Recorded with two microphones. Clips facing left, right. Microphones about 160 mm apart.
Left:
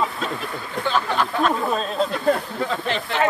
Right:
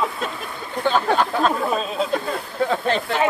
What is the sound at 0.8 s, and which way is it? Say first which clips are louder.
Speech: right 4 dB; 40° right (ahead or behind).